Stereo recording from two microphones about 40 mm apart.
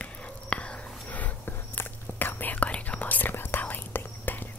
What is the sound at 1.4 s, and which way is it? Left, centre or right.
Whispering, left.